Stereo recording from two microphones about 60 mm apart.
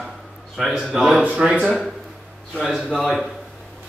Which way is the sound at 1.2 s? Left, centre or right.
Centre.